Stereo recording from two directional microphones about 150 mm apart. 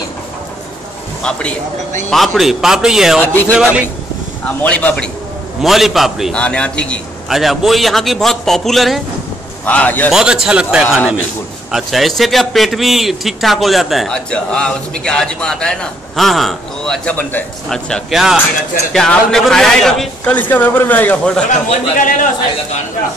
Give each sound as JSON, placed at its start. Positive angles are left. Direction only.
{"t": 1.2, "sound": "a man's voice", "side_deg": 5}
{"t": 3.2, "sound": "a man's voice", "side_deg": 10}
{"t": 4.6, "sound": "a man's voice", "side_deg": 10}
{"t": 10.1, "sound": "a man's voice", "side_deg": -5}
{"t": 21.5, "sound": "a man's voice", "side_deg": 60}